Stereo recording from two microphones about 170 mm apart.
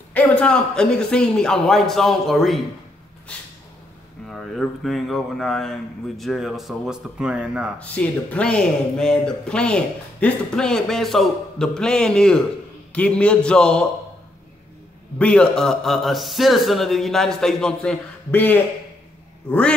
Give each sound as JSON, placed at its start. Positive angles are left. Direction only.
{"t": 0.1, "sound": "speech", "side_deg": 5}
{"t": 4.3, "sound": "speech", "side_deg": 0}
{"t": 7.8, "sound": "speech", "side_deg": 10}
{"t": 15.1, "sound": "speech", "side_deg": 5}